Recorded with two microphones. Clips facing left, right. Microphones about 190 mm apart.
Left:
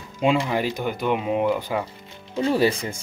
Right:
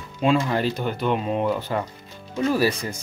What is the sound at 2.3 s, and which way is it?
Speech, 30° left (ahead or behind).